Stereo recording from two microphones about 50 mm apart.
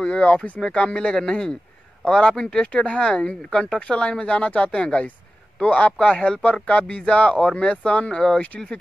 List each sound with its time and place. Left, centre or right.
0.1 s speech: left
0.7 s a man's voice: centre